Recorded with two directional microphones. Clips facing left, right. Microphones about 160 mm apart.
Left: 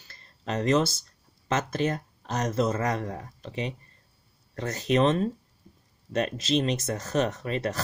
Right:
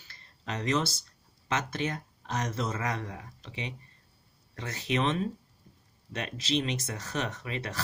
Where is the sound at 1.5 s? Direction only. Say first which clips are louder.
Left 5 dB; 40° left (ahead or behind).